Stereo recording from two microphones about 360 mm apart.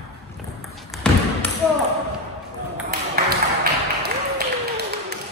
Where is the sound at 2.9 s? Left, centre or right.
Right.